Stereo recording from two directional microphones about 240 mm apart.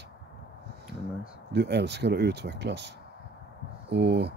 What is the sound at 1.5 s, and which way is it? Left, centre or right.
Speech, right.